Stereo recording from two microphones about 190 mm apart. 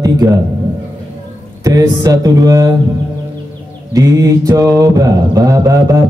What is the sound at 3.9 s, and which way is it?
Mantra, 20° right (ahead or behind).